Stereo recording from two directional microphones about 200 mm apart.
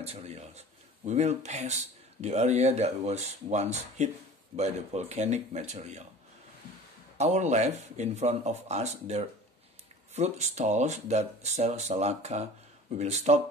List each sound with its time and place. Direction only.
0.0 s speech: 30° right (ahead or behind)
7.2 s speech: 35° right (ahead or behind)